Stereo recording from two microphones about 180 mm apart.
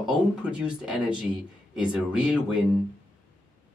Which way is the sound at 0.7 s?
5° right (ahead or behind).